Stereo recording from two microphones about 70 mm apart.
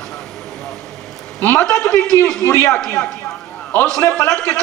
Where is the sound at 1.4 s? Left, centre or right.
Left.